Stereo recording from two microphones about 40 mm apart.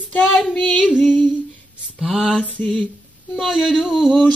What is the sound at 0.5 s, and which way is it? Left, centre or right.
Female singing, left.